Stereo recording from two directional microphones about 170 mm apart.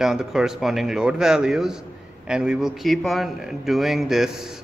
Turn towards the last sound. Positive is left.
turn(degrees=0)  # may be behind; listen again after turning